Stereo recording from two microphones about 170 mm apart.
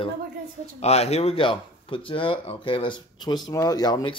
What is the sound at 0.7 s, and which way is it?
Speech, 40° left (ahead or behind).